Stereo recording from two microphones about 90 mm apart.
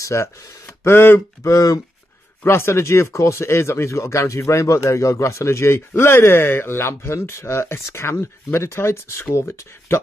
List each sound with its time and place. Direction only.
0.0 s speech: 35° left (ahead or behind)
1.5 s speech: 40° left (ahead or behind)
2.4 s speech: 30° left (ahead or behind)